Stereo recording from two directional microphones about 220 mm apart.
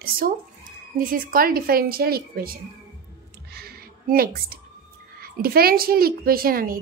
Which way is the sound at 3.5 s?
45° right (ahead or behind).